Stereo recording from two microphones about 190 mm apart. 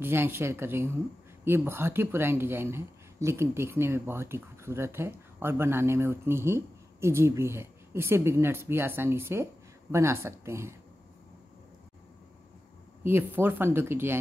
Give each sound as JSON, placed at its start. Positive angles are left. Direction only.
{"t": 0.0, "sound": "speech", "side_deg": -10}
{"t": 13.0, "sound": "speech", "side_deg": -10}